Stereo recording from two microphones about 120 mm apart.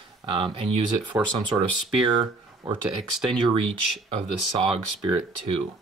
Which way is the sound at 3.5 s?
50° right (ahead or behind).